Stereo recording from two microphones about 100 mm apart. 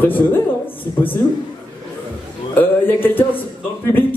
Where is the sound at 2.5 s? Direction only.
20° left (ahead or behind).